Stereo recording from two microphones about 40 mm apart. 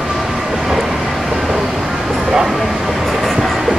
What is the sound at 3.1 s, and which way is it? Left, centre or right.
Train, centre.